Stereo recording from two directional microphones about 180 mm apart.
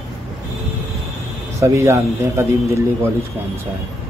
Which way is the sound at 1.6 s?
15° right (ahead or behind).